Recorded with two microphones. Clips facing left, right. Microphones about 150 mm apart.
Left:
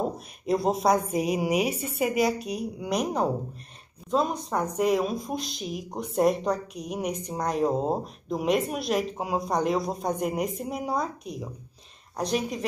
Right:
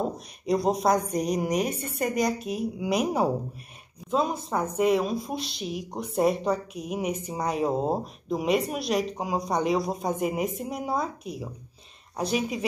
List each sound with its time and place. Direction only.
0.5 s speech: centre (ahead or behind)